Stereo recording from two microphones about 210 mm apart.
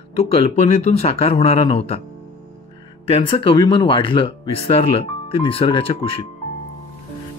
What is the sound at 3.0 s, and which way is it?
Speech, 25° left (ahead or behind).